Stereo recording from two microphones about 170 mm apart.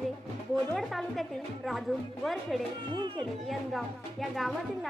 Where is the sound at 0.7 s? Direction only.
Centre (ahead or behind).